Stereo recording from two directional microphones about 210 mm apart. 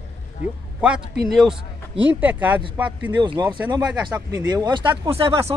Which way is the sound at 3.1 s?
20° right (ahead or behind).